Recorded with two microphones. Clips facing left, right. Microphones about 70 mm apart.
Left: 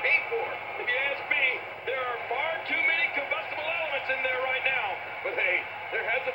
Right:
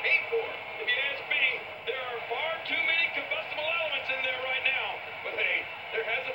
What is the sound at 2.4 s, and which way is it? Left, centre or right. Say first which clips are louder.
Music: left 2 dB; left.